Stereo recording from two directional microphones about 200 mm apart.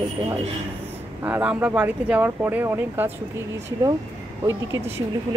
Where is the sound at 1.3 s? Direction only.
10° right (ahead or behind).